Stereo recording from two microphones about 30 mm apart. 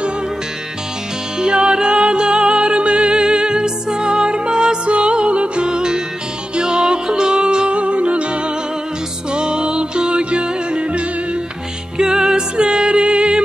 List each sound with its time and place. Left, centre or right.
1.4 s music: right
9.3 s music: right
12.0 s music: right